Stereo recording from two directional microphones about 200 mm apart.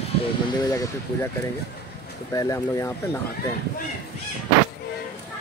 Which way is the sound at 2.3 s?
15° left (ahead or behind).